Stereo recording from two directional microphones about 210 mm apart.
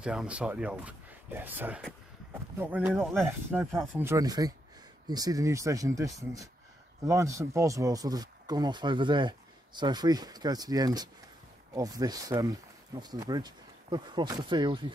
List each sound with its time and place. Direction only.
0.0 s speech: 5° right (ahead or behind); by 14.9 s 20° right (ahead or behind)